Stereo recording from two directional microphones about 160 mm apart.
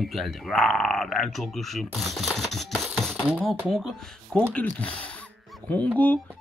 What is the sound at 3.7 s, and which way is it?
Speech, centre (ahead or behind).